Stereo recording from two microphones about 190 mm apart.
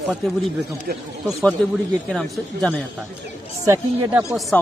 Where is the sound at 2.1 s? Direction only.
5° left (ahead or behind).